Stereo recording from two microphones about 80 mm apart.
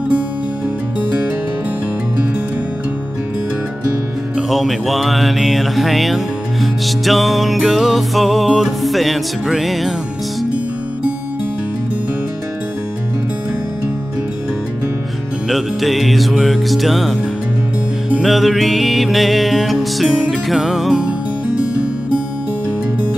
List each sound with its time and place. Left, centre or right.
4.4 s music: centre
15.5 s music: centre
18.2 s music: centre
21.5 s music: centre